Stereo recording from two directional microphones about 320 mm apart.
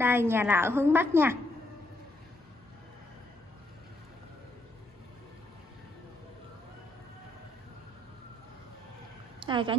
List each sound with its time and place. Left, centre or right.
0.0 s a woman's voice: centre
9.4 s a woman's voice: centre